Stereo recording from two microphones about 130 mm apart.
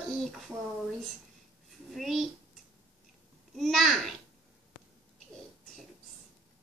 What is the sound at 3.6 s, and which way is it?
Speech, centre (ahead or behind).